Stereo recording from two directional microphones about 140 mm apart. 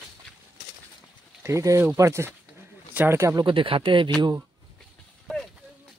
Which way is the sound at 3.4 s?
40° right (ahead or behind).